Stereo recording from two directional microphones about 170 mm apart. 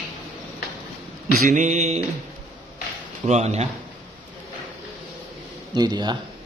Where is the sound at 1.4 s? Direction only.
45° right (ahead or behind).